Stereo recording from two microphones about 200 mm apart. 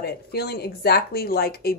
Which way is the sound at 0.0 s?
50° left (ahead or behind).